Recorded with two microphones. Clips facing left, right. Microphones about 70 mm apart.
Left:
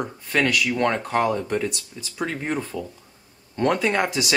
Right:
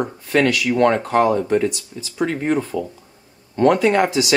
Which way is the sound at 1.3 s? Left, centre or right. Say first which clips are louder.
Right 7 dB; right.